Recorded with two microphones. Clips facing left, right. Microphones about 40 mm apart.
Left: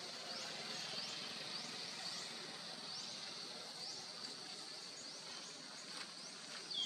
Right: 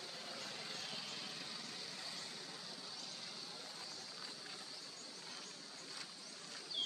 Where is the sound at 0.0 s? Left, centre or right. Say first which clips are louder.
Even; centre.